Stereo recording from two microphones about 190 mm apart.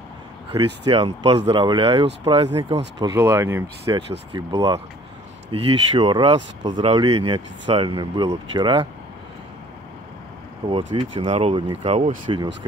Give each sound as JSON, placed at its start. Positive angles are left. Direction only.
{"t": 0.8, "sound": "speech", "side_deg": -25}
{"t": 10.7, "sound": "speech", "side_deg": -25}